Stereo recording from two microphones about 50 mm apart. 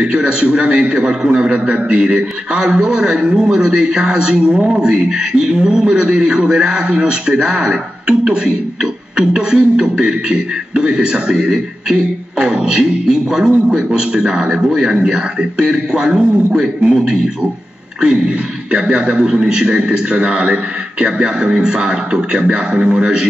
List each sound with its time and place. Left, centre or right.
0.0 s a man's voice: centre